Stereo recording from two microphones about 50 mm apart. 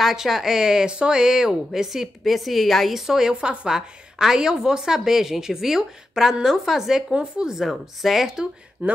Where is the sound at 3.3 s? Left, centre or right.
Centre.